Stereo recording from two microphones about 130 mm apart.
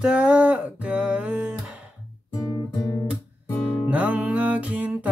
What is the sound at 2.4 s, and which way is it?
Guitar, 25° left (ahead or behind).